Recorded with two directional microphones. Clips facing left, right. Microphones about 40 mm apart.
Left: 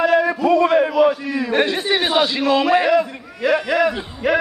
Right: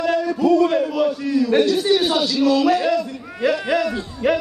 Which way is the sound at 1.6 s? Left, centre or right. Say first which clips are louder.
Right 2 dB; left.